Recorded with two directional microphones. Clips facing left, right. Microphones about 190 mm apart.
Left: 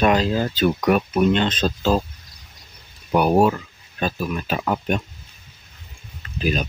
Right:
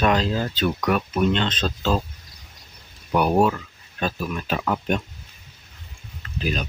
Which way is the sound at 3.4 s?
15° left (ahead or behind).